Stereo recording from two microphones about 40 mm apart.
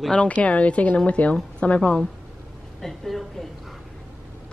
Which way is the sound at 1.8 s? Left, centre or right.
Left.